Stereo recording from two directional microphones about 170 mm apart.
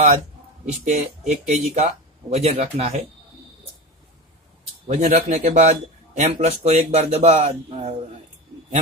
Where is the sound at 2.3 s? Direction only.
40° right (ahead or behind).